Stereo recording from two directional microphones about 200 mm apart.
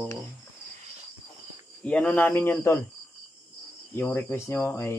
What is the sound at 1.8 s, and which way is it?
Speech, 5° left (ahead or behind).